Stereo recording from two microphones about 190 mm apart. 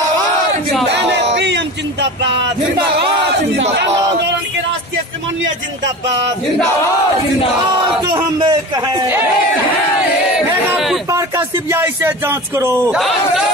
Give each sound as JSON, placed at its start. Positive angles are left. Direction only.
{"t": 0.9, "sound": "a sound", "side_deg": -65}
{"t": 8.0, "sound": "a man's voice", "side_deg": -20}
{"t": 11.1, "sound": "speech", "side_deg": -15}